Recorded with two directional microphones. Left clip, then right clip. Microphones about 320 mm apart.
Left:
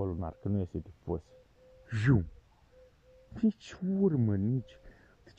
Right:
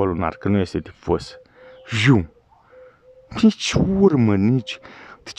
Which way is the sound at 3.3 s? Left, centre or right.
Centre.